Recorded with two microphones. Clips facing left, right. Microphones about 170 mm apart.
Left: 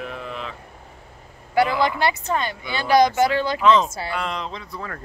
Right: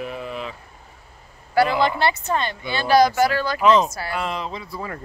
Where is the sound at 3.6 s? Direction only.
10° right (ahead or behind).